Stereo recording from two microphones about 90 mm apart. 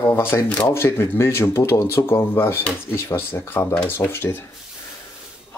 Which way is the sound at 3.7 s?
20° left (ahead or behind).